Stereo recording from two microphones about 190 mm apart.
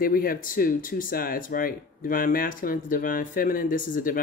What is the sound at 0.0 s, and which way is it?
Speech, 50° left (ahead or behind).